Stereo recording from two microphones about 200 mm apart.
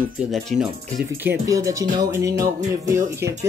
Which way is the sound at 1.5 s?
15° right (ahead or behind).